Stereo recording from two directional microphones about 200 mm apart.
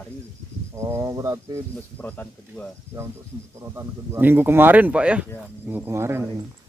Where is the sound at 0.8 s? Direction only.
15° right (ahead or behind).